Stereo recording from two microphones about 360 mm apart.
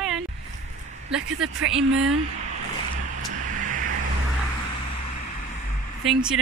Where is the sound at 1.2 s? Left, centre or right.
Right.